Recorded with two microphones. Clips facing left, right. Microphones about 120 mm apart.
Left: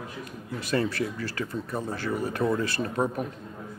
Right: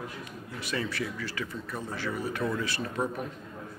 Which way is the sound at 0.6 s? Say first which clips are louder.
Left 6 dB; 40° left (ahead or behind).